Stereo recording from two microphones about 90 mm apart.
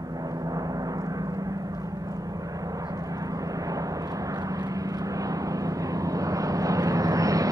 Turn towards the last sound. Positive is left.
turn(degrees=-40)  # may be behind; listen again after turning